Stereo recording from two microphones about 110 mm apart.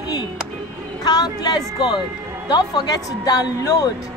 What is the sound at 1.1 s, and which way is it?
A woman's voice, 35° left (ahead or behind).